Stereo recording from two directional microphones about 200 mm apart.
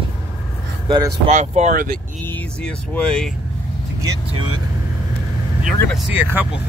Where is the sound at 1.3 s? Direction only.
35° right (ahead or behind).